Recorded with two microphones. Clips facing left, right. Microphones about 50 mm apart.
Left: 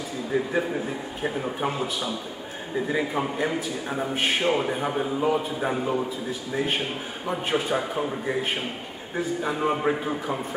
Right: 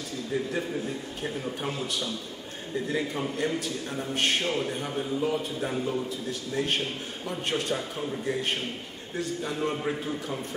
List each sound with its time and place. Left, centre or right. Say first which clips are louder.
0.3 s a man's voice: left 5 dB; centre
6.2 s a man's voice: left 2 dB; centre